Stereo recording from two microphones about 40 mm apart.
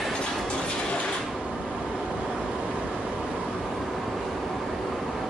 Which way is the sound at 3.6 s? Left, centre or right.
Centre.